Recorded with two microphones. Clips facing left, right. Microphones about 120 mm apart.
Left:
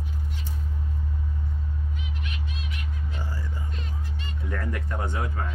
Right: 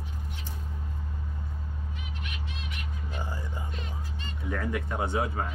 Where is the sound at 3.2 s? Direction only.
20° right (ahead or behind).